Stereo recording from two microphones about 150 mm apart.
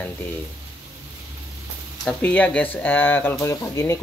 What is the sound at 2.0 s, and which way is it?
Speech, 10° left (ahead or behind).